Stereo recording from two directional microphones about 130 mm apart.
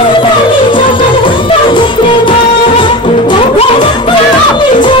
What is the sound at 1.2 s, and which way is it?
Music, 40° left (ahead or behind).